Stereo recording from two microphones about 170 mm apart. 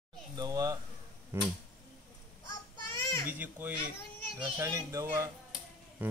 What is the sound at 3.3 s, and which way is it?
Speech, 10° right (ahead or behind).